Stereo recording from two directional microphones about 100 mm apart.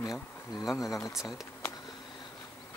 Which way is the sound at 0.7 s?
35° left (ahead or behind).